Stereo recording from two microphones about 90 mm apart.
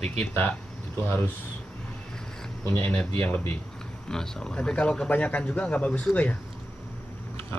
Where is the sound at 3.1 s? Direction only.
20° left (ahead or behind).